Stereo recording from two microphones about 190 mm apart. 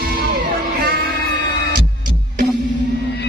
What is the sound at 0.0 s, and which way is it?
Music, 50° right (ahead or behind).